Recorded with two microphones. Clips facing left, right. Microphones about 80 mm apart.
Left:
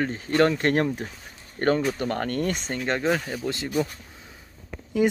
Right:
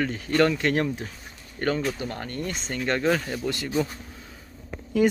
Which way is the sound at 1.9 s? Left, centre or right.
Left.